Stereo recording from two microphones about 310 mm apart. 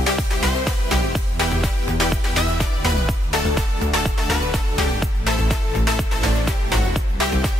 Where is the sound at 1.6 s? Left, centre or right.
Centre.